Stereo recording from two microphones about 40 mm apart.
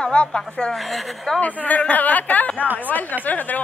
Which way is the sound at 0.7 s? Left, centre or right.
Centre.